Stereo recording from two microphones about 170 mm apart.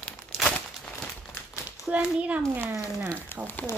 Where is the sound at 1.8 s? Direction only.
5° right (ahead or behind).